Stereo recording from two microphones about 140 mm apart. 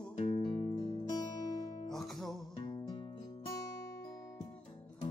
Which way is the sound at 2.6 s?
40° left (ahead or behind).